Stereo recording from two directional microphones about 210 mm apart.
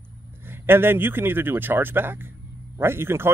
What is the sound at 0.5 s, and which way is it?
Speech, 10° right (ahead or behind).